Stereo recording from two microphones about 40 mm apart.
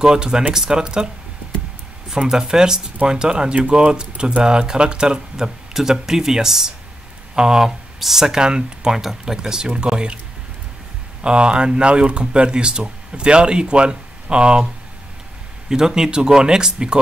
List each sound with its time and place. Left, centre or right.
0.0 s speech: centre
2.2 s speech: centre
11.2 s speech: right
15.7 s speech: centre